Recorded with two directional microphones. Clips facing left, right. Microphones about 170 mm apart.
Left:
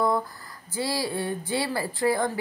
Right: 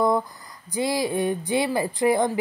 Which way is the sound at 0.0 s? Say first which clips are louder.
Right 3 dB; 20° right (ahead or behind).